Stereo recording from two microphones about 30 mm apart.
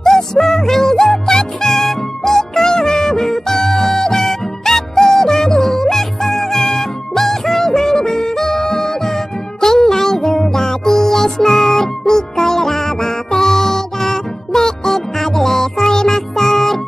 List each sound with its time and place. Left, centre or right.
0.0 s music: centre